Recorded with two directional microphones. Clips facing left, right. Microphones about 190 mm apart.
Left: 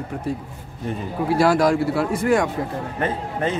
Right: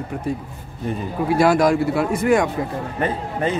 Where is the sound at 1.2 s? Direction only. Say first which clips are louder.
Right 1 dB; 20° right (ahead or behind).